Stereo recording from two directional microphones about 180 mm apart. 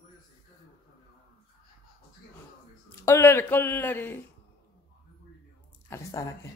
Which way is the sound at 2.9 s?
15° left (ahead or behind).